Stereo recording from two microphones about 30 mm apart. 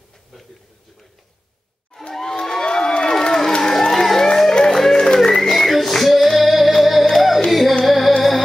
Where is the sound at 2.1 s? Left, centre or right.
Centre.